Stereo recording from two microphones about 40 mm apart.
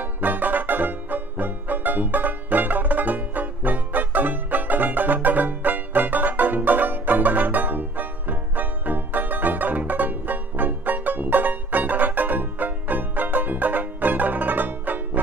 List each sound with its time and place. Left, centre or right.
0.0 s music: right